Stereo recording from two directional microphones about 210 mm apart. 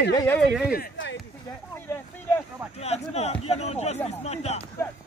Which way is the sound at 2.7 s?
30° left (ahead or behind).